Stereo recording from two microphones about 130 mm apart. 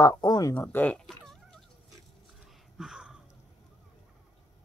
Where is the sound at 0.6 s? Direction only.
10° left (ahead or behind).